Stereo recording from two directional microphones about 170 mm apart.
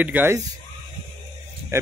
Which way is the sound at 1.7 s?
15° right (ahead or behind).